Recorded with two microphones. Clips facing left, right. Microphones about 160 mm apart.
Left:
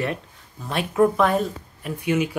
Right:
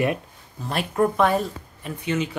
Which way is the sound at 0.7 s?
Centre (ahead or behind).